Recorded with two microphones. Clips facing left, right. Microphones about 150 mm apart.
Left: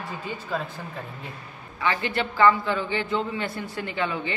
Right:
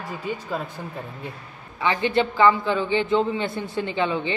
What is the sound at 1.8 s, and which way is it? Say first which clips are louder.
A man's voice: right 5 dB; 20° right (ahead or behind).